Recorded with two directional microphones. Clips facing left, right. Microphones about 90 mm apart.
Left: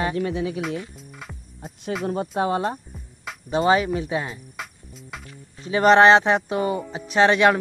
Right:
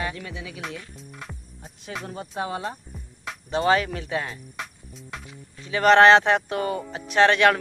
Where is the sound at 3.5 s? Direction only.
15° left (ahead or behind).